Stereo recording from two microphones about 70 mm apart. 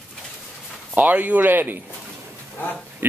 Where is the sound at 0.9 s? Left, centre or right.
Right.